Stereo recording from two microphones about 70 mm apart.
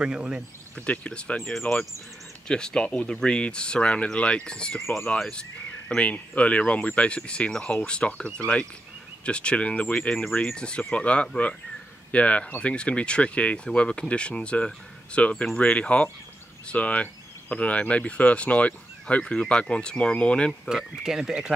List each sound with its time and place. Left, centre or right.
0.0 s speech: centre
0.7 s speech: centre
20.6 s speech: centre